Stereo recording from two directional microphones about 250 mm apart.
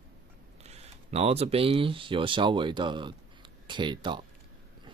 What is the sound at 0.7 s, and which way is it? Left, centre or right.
Speech, right.